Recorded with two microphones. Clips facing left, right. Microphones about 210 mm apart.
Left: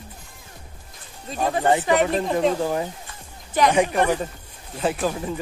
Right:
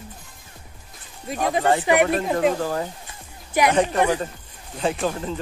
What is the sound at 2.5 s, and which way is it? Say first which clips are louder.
Speech: left 1 dB; 15° left (ahead or behind).